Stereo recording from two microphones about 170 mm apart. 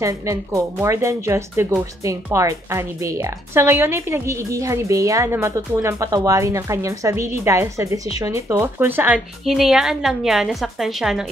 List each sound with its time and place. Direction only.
0.0 s a woman's voice: 20° right (ahead or behind); by 11.2 s centre (ahead or behind)